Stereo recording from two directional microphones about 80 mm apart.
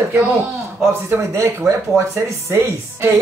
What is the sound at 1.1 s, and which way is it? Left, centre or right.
Speech, right.